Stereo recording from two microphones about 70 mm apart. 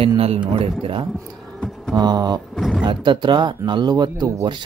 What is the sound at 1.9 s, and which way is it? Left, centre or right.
Speech, right.